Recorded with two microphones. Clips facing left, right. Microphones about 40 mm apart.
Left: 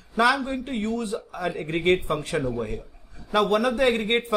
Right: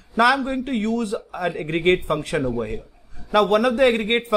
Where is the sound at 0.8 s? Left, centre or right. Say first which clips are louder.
Right 4 dB; right.